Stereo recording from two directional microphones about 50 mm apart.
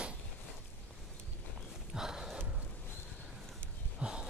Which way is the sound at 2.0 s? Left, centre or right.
Centre.